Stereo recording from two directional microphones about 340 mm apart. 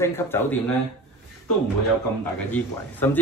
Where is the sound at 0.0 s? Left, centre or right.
Centre.